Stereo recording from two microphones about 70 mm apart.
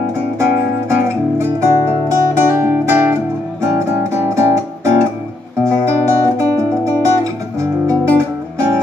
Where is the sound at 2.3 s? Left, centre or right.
Right.